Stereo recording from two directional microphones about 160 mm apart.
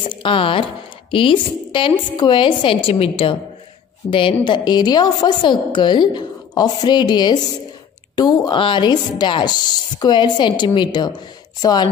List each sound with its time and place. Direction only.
0.2 s a woman's voice: 30° left (ahead or behind)